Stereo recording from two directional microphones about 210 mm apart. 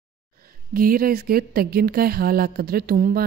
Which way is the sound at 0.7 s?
45° right (ahead or behind).